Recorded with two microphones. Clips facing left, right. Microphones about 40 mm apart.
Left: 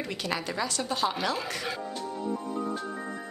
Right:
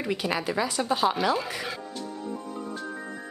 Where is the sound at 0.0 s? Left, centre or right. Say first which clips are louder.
Right 4 dB; centre.